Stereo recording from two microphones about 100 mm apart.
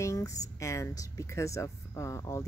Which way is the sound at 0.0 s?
30° left (ahead or behind).